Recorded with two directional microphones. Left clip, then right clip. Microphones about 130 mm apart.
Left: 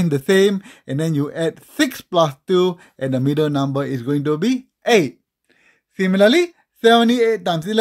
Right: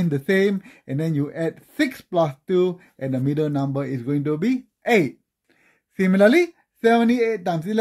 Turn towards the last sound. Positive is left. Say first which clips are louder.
# left 5 dB
turn(degrees=35)  # may be behind; listen again after turning